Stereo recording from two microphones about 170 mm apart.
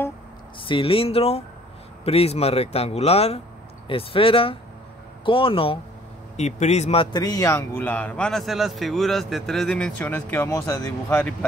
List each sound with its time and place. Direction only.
0.6 s a man's voice: 30° left (ahead or behind); by 11.3 s 10° left (ahead or behind)